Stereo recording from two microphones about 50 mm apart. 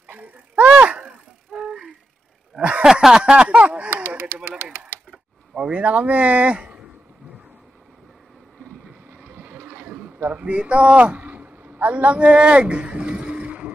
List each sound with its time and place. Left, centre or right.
0.1 s a sound: right
0.7 s bicycle: right
2.8 s speech: centre; by 3.9 s right
5.5 s speech: right
9.2 s boat: right
10.3 s a sound: right